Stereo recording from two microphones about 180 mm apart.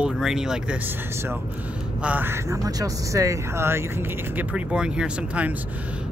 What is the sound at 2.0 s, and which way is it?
Speech, 10° right (ahead or behind).